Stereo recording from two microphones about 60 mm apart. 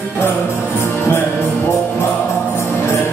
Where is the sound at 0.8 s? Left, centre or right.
Left.